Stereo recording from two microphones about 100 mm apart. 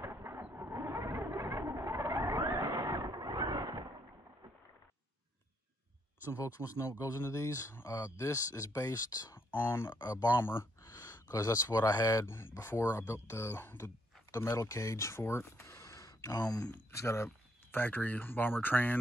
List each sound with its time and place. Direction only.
0.0 s a sound: 25° right (ahead or behind)
6.3 s speech: 35° left (ahead or behind)
9.5 s speech: 25° left (ahead or behind); by 16.7 s 40° left (ahead or behind)
16.9 s speech: 30° left (ahead or behind)